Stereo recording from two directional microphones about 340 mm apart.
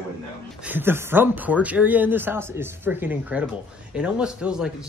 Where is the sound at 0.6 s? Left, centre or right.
Centre.